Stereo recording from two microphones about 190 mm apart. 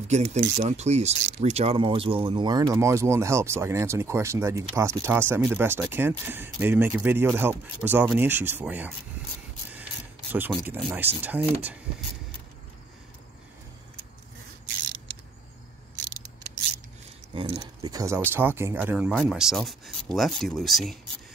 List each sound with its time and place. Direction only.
0.1 s speech: 35° right (ahead or behind); by 8.9 s 10° right (ahead or behind)
10.3 s speech: 10° right (ahead or behind)
17.3 s speech: 25° right (ahead or behind); by 21.0 s centre (ahead or behind)